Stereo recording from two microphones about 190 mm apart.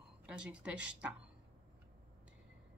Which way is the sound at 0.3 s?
5° right (ahead or behind).